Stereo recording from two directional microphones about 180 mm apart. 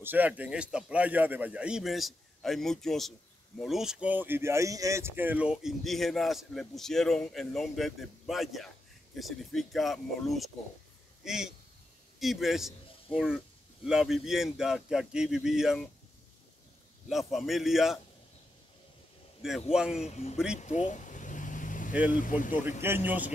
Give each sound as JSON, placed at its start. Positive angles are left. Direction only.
{"t": 0.0, "sound": "a man's voice", "side_deg": -10}
{"t": 17.1, "sound": "a man's voice", "side_deg": 0}
{"t": 19.4, "sound": "a man's voice", "side_deg": 0}
{"t": 20.1, "sound": "speech", "side_deg": 40}
{"t": 20.5, "sound": "vehicle", "side_deg": 40}
{"t": 22.1, "sound": "speech", "side_deg": 45}
{"t": 22.6, "sound": "speech", "side_deg": -10}